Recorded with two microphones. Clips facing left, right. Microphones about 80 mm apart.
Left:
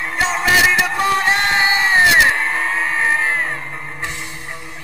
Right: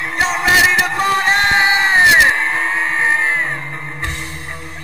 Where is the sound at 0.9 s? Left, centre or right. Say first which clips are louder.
Right 1 dB; centre.